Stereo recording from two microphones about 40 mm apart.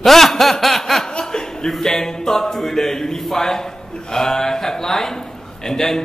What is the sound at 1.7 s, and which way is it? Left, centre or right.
A man's voice, centre.